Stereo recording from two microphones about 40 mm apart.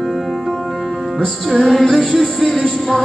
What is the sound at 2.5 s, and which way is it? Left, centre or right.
Music, centre.